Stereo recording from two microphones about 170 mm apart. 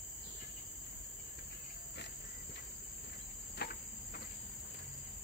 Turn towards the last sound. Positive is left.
turn(degrees=70)  # may be behind; listen again after turning